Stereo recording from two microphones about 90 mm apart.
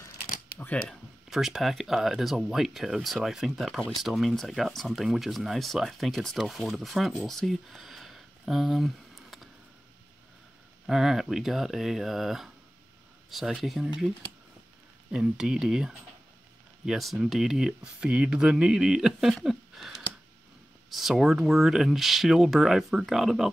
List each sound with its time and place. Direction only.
0.6 s speech: 15° left (ahead or behind)
1.3 s speech: centre (ahead or behind)
10.9 s speech: 5° right (ahead or behind)
15.0 s speech: 5° right (ahead or behind)